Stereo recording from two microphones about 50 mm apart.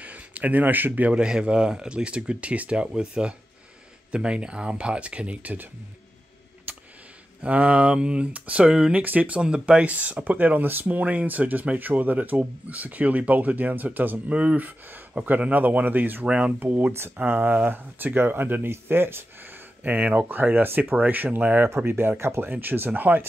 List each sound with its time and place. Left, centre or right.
0.0 s speech: right
1.1 s speech: centre
2.8 s speech: centre; by 5.7 s right
7.4 s speech: right
8.9 s speech: right
9.4 s speech: centre; by 16.3 s right
16.3 s speech: right
16.5 s speech: right
19.8 s speech: right
21.7 s speech: right
22.5 s speech: right